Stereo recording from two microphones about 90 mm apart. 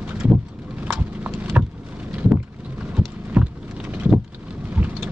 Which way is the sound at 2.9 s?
10° right (ahead or behind).